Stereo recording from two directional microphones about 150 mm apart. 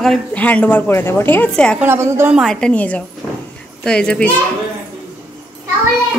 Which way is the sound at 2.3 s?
5° left (ahead or behind).